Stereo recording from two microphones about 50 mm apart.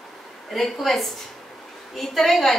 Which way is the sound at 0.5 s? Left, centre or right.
Centre.